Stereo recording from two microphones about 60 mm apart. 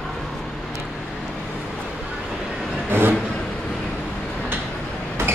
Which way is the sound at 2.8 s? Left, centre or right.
Right.